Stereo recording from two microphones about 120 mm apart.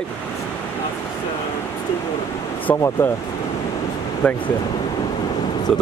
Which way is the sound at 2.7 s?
20° left (ahead or behind).